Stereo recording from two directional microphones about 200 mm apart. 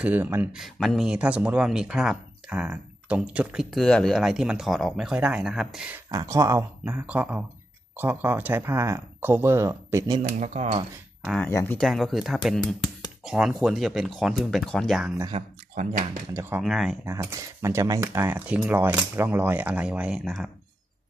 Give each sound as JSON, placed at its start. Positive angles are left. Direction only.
{"t": 0.0, "sound": "speech", "side_deg": -10}
{"t": 6.0, "sound": "speech", "side_deg": -15}
{"t": 10.4, "sound": "speech", "side_deg": -35}
{"t": 11.2, "sound": "speech", "side_deg": 0}
{"t": 15.3, "sound": "speech", "side_deg": -35}
{"t": 16.3, "sound": "speech", "side_deg": -10}
{"t": 17.1, "sound": "speech", "side_deg": -15}